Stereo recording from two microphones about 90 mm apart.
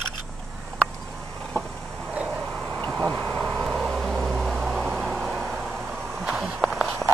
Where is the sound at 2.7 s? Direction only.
10° left (ahead or behind).